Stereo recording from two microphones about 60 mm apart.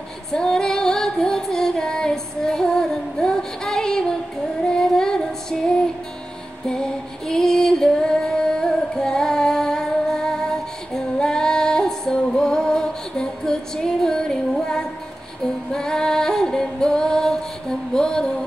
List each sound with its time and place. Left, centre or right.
0.3 s female singing: centre
6.7 s female singing: centre
15.4 s music: centre